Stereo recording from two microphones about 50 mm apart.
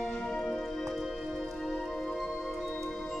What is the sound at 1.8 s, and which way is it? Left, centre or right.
Music, centre.